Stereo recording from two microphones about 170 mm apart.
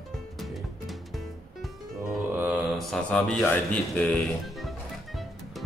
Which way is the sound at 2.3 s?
10° right (ahead or behind).